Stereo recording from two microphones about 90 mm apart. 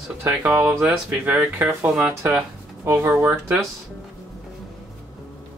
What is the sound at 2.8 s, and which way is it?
Speech, 25° right (ahead or behind).